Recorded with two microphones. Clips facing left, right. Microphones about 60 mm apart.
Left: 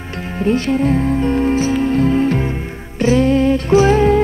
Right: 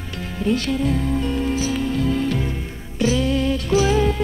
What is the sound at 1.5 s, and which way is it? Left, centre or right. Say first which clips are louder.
Music: left 7 dB; left.